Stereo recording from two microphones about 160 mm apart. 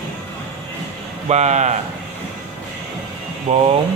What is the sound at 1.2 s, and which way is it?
Speech, 45° right (ahead or behind).